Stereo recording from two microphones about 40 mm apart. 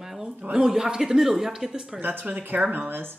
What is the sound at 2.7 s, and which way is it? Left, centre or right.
Speech, right.